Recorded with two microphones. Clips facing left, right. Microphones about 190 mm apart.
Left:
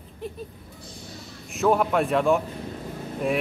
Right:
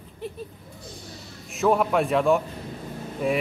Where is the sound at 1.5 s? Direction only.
Centre (ahead or behind).